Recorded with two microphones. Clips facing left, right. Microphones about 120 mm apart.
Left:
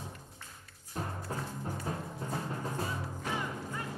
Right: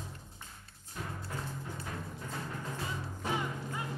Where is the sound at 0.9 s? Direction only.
35° left (ahead or behind).